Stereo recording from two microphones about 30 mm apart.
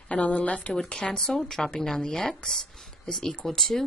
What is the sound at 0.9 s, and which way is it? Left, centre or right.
Speech, left.